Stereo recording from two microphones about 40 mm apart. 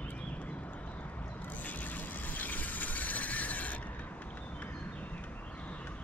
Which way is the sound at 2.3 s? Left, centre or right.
Left.